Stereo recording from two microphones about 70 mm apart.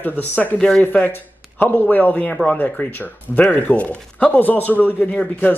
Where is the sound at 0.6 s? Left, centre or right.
Centre.